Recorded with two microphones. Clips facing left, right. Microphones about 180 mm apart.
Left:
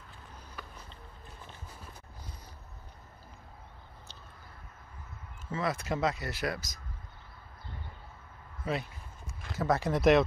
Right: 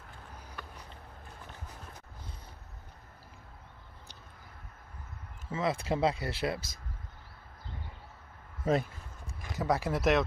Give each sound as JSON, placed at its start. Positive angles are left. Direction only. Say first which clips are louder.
{"t": 5.5, "sound": "speech", "louder": "right 1 dB", "side_deg": -25}
{"t": 8.6, "sound": "speech", "louder": "right 5 dB", "side_deg": -40}
{"t": 9.4, "sound": "speech", "louder": "left 1 dB", "side_deg": -15}